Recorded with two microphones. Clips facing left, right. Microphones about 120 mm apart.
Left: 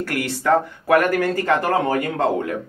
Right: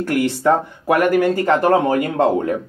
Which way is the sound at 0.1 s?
20° right (ahead or behind).